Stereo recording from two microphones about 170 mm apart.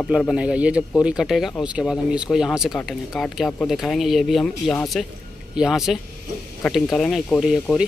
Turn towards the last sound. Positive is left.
turn(degrees=0)  # may be behind; listen again after turning